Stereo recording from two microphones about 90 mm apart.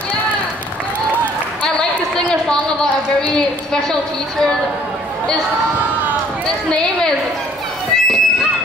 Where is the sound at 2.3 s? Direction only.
10° left (ahead or behind).